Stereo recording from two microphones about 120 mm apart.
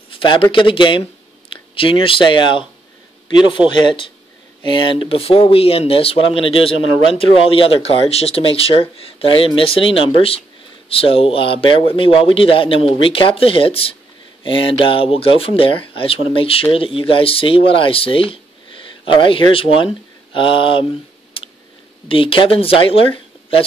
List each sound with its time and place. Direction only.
0.1 s speech: 45° left (ahead or behind)
22.0 s speech: 50° left (ahead or behind)